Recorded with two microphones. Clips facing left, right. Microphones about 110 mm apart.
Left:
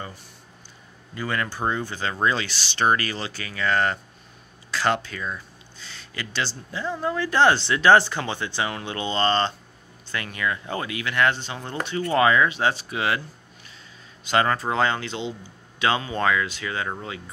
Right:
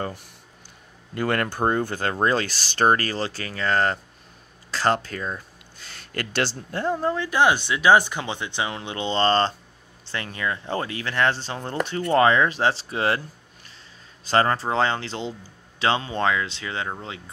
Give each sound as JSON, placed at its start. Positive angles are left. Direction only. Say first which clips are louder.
{"t": 1.1, "sound": "speech", "louder": "right 4 dB", "side_deg": -60}
{"t": 5.8, "sound": "speech", "louder": "right 4 dB", "side_deg": -50}
{"t": 7.2, "sound": "speech", "louder": "left 4 dB", "side_deg": -10}
{"t": 14.2, "sound": "speech", "louder": "right 1 dB", "side_deg": -35}